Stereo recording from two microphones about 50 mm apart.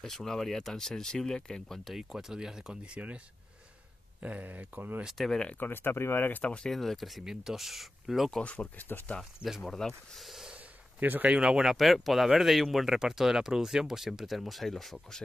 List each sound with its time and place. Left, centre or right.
0.0 s speech: centre
2.0 s speech: centre
4.2 s speech: right
5.1 s speech: centre
5.6 s speech: left
6.3 s speech: left
6.7 s speech: centre
8.3 s speech: left
8.8 s speech: left
9.7 s speech: centre
10.2 s snort: centre
11.0 s speech: right
11.4 s speech: centre